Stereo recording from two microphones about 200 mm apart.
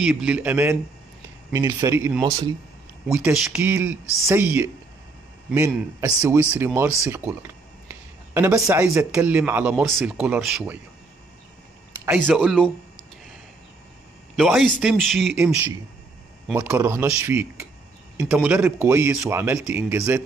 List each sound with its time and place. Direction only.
0.0 s speech: 5° right (ahead or behind)
3.1 s a man's voice: 5° right (ahead or behind)
12.1 s a man's voice: 5° right (ahead or behind)
14.3 s a man's voice: centre (ahead or behind)